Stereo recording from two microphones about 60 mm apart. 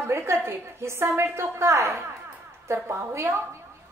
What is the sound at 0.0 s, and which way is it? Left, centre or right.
A woman's voice, right.